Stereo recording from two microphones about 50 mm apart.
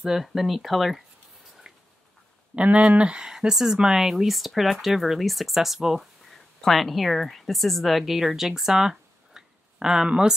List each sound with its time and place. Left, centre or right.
0.0 s speech: centre
1.6 s a sound: centre
2.5 s speech: right